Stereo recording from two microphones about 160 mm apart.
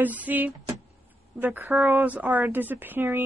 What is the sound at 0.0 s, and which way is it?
Speech, 10° right (ahead or behind).